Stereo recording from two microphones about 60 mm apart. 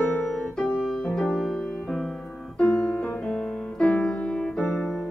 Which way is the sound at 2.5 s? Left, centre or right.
Centre.